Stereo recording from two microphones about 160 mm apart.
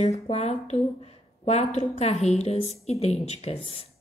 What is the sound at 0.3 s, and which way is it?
A woman's voice, 45° left (ahead or behind).